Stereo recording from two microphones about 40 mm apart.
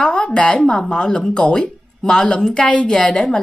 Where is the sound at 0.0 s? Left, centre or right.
Left.